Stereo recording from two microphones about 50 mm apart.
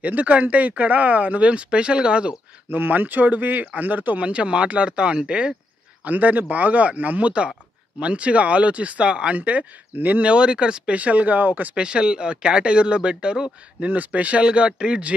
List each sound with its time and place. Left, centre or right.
0.0 s speech: right
2.7 s speech: right; by 5.6 s centre
6.0 s speech: right
11.0 s speech: right
11.7 s speech: centre
13.8 s speech: right